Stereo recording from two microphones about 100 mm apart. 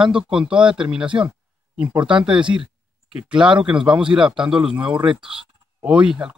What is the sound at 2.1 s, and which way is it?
Speech, 55° right (ahead or behind).